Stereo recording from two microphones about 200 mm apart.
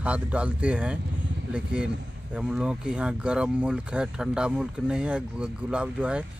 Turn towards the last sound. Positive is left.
turn(degrees=-5)  # may be behind; listen again after turning